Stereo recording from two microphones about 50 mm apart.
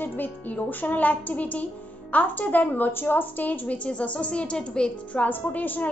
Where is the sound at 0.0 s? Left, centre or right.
Left; by 4.9 s centre.